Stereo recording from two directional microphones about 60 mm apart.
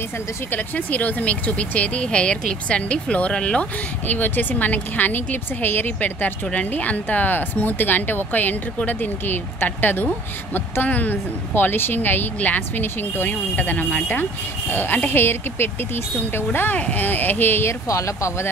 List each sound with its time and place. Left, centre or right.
0.5 s speech: left
4.1 s a woman's voice: left
16.7 s a woman's voice: left
17.6 s speech: left